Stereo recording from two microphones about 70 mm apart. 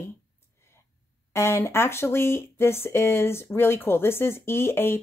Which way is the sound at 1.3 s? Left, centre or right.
Left.